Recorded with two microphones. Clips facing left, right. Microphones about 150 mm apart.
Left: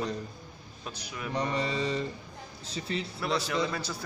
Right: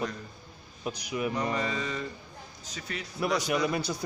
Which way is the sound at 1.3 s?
30° left (ahead or behind).